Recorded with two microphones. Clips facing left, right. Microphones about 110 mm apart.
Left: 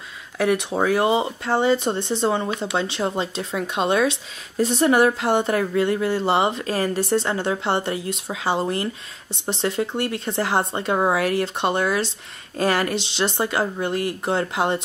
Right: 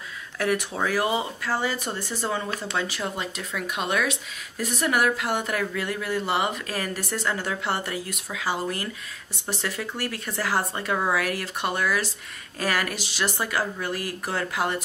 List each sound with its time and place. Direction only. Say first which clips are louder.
0.4 s speech: left 5 dB; 25° left (ahead or behind)